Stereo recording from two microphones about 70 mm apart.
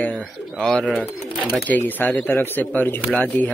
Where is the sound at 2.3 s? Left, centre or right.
Left.